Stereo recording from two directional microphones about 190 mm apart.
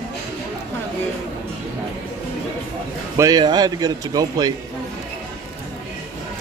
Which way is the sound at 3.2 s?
20° right (ahead or behind).